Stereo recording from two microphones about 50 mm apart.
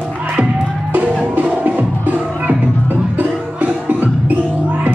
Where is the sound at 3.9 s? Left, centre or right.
Right.